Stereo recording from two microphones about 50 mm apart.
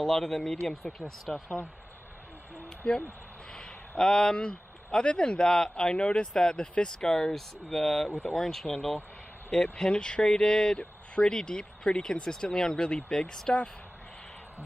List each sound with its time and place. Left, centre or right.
0.0 s speech: centre
2.8 s speech: centre